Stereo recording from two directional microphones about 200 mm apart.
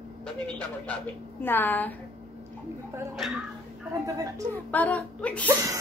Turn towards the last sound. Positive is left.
turn(degrees=5)  # may be behind; listen again after turning